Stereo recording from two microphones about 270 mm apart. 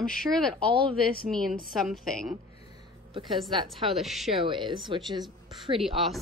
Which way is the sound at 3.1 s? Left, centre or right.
Centre.